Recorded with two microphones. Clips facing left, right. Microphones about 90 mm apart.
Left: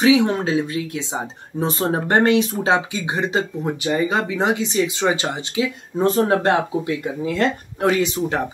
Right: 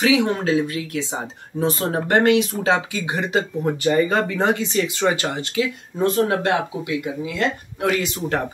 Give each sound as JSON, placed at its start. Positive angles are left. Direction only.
{"t": 0.0, "sound": "speech", "side_deg": 25}
{"t": 3.6, "sound": "speech", "side_deg": 15}
{"t": 7.9, "sound": "speech", "side_deg": 25}